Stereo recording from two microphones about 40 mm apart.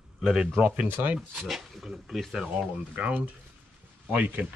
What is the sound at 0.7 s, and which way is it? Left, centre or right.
Speech, right.